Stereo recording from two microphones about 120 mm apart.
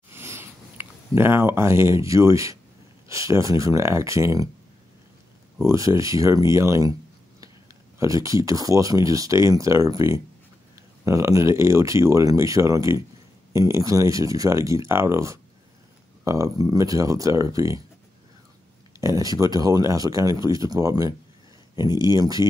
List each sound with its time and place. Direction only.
0.1 s a sound: 20° right (ahead or behind)
3.1 s speech: 25° right (ahead or behind)
5.6 s speech: 25° right (ahead or behind)
18.9 s speech: 25° right (ahead or behind)